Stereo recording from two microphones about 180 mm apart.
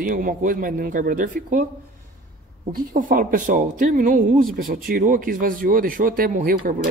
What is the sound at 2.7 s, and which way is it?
Speech, 50° right (ahead or behind).